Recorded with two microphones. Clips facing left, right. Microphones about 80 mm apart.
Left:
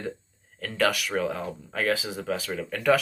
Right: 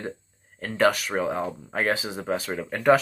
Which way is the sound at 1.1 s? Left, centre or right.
Right.